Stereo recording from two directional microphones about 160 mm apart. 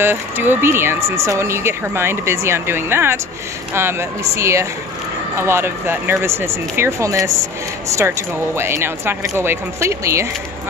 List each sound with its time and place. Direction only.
0.0 s speech: 15° right (ahead or behind)
8.5 s speech: 15° right (ahead or behind)